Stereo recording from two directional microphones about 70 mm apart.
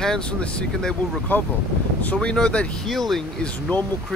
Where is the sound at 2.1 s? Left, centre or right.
Centre.